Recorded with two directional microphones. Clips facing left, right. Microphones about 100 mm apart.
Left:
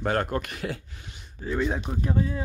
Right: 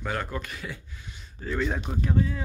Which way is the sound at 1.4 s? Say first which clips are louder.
Left 2 dB; 15° left (ahead or behind).